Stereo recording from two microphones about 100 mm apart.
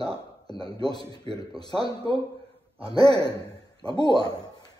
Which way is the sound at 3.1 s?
45° left (ahead or behind).